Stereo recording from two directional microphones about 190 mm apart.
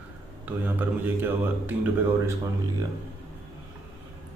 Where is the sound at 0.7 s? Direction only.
10° right (ahead or behind).